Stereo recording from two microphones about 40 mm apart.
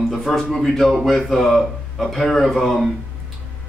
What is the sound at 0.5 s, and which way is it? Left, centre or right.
Speech, centre.